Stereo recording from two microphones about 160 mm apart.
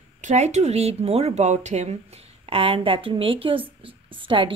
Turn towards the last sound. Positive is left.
turn(degrees=-30)  # may be behind; listen again after turning